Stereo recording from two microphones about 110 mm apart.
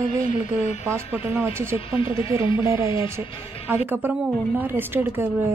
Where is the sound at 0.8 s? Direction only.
20° right (ahead or behind).